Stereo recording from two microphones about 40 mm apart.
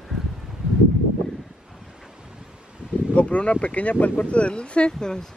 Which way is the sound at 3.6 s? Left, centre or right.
Left.